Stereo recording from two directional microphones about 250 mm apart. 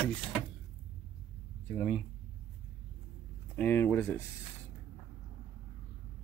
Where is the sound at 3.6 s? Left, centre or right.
Centre.